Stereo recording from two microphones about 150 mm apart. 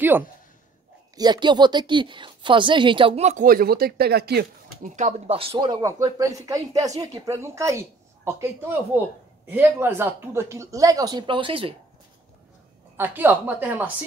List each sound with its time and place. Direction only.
1.1 s a woman's voice: 30° right (ahead or behind); by 3.4 s 45° right (ahead or behind)
3.4 s speech: 80° right
4.9 s a woman's voice: 50° right (ahead or behind)
12.9 s a woman's voice: 15° right (ahead or behind)